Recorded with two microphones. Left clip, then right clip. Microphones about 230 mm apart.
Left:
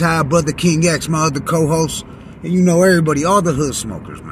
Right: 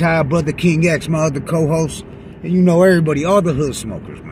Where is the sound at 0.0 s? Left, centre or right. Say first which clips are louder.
Left 1 dB; centre.